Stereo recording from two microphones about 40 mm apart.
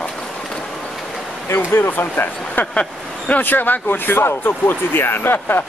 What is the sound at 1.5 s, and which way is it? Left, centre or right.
Speech, left.